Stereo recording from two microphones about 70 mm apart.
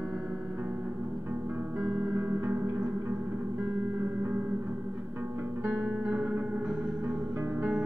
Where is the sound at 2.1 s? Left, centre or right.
Right.